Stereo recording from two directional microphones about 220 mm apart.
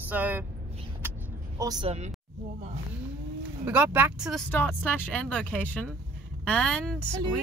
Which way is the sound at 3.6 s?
10° right (ahead or behind).